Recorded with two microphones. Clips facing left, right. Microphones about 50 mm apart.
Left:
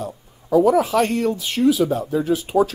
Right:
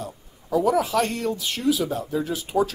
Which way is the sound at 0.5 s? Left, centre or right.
Left.